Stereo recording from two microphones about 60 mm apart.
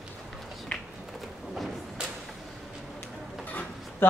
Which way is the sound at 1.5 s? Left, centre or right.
Centre.